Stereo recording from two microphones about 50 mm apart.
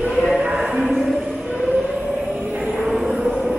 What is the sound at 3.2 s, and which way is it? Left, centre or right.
Train, centre.